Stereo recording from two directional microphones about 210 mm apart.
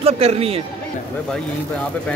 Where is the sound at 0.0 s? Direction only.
30° right (ahead or behind).